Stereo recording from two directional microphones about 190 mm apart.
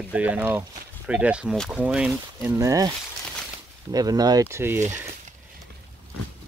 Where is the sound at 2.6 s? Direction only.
15° right (ahead or behind).